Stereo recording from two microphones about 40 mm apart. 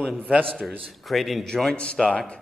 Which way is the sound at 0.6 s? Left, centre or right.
Centre.